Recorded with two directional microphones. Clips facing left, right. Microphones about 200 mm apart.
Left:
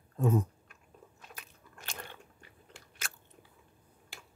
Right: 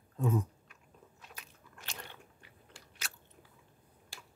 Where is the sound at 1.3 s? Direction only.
50° left (ahead or behind).